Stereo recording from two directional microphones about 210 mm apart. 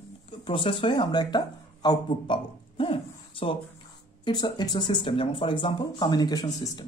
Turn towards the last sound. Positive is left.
turn(degrees=20)  # may be behind; listen again after turning